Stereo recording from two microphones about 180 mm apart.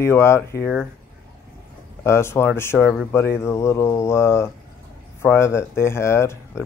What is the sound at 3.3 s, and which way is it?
Speech, 15° left (ahead or behind).